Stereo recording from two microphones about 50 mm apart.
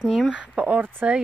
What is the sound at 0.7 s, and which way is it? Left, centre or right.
Speech, right.